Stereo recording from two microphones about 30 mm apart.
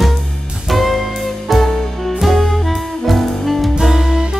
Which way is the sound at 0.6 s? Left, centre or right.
Centre.